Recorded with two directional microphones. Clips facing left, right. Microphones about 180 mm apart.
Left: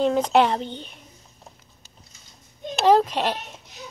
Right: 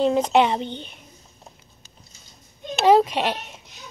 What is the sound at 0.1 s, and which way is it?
Speech, centre (ahead or behind).